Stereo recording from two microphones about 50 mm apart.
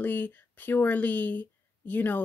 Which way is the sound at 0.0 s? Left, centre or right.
Left.